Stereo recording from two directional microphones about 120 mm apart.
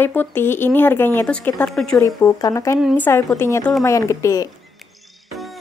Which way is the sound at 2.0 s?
30° left (ahead or behind).